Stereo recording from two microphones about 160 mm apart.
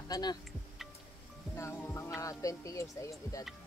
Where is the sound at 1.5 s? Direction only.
15° left (ahead or behind).